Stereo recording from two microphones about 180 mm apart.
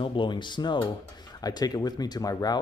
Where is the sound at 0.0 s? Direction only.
25° left (ahead or behind).